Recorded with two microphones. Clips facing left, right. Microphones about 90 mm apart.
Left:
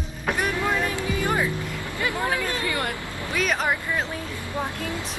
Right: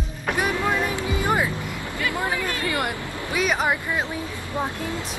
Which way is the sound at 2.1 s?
20° right (ahead or behind).